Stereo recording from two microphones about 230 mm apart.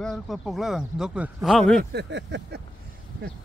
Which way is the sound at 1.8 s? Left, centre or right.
Right.